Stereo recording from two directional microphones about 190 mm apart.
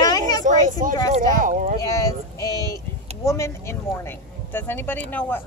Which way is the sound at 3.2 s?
15° left (ahead or behind).